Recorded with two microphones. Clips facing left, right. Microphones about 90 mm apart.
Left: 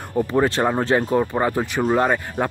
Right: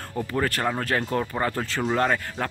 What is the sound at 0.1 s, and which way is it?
Speech, 20° left (ahead or behind).